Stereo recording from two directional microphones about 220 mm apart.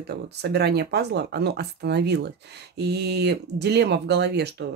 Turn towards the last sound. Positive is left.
turn(degrees=-50)  # may be behind; listen again after turning